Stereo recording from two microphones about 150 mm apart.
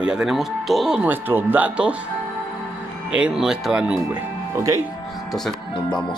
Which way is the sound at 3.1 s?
5° right (ahead or behind).